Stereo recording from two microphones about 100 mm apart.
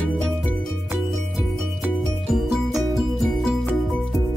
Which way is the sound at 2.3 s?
Centre (ahead or behind).